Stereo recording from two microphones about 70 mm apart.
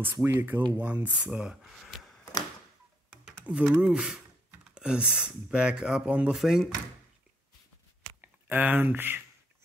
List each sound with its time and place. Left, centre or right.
0.0 s speech: right; by 1.7 s centre
1.7 s a sound: centre
3.4 s speech: centre
6.3 s speech: centre
8.2 s speech: right